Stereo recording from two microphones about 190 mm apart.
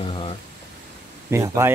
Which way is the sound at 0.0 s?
30° left (ahead or behind).